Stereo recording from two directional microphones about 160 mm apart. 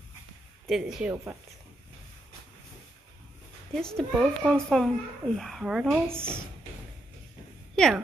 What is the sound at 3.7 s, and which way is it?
Speech, centre (ahead or behind).